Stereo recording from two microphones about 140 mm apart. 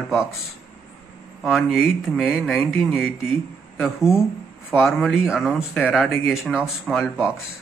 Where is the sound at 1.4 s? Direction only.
Centre (ahead or behind).